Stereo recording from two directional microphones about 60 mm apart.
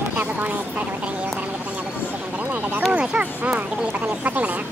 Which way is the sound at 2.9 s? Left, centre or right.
Centre.